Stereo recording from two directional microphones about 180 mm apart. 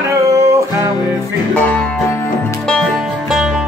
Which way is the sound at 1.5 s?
10° left (ahead or behind).